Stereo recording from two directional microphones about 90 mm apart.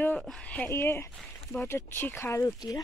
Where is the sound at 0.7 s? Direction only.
30° left (ahead or behind).